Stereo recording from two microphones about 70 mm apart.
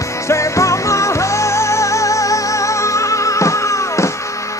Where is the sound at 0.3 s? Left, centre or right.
Left.